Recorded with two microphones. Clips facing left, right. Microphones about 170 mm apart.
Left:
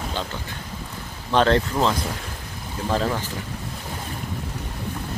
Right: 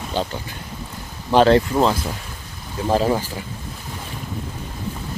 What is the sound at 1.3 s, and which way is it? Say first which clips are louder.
Speech: right 5 dB; 10° right (ahead or behind).